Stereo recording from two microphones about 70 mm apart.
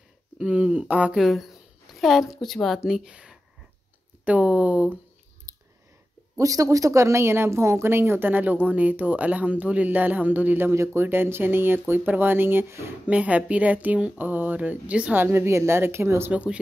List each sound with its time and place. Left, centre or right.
0.4 s speech: centre
1.1 s speech: centre
2.8 s speech: centre
5.5 s clicking: right
6.3 s speech: right
13.0 s speech: centre
15.1 s speech: right
16.3 s speech: centre